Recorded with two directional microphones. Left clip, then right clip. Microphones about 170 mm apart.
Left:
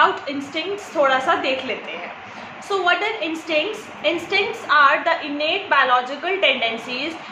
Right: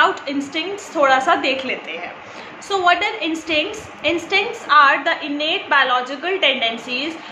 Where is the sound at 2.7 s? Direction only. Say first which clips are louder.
Right 3 dB; 20° right (ahead or behind).